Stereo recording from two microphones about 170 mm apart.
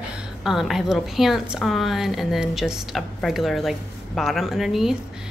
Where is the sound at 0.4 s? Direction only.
Centre (ahead or behind).